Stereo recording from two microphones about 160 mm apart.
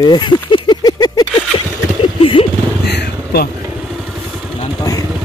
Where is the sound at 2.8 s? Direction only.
85° left.